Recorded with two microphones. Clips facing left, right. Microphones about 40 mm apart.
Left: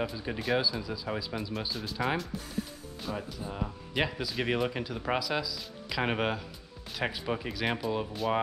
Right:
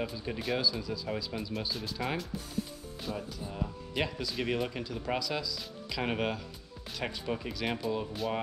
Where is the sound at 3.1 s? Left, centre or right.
Left.